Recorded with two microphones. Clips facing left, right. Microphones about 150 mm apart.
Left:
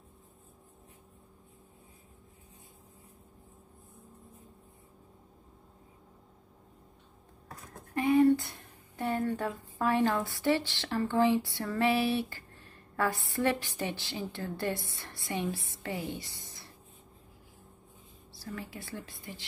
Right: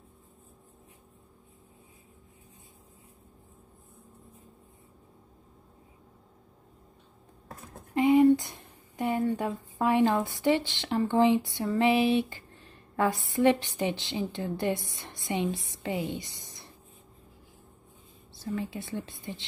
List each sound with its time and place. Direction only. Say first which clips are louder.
7.4 s a sound: right 2 dB; 20° right (ahead or behind)
9.5 s a woman's voice: right 3 dB; 15° right (ahead or behind)
18.4 s a woman's voice: right 8 dB; 20° right (ahead or behind)